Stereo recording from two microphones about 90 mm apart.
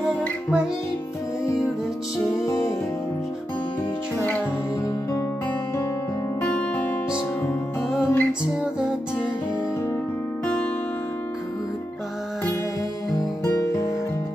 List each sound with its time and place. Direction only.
2.4 s music: 30° left (ahead or behind)
6.4 s music: 15° left (ahead or behind)
8.0 s music: 25° left (ahead or behind)
10.4 s music: 10° left (ahead or behind)
13.4 s music: 30° left (ahead or behind)